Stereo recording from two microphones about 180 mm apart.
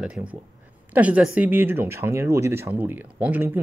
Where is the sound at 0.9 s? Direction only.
10° right (ahead or behind).